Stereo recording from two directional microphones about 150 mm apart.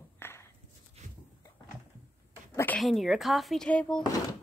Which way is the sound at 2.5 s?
10° left (ahead or behind).